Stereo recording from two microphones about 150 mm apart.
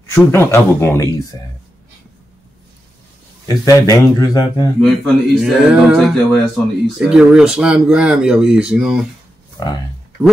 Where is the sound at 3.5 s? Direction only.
25° left (ahead or behind).